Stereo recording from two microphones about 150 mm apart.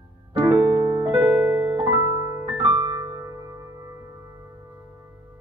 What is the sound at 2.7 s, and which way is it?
Music, 25° right (ahead or behind).